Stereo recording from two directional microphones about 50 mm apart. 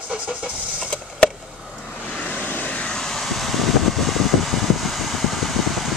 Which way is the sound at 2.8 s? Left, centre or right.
Centre.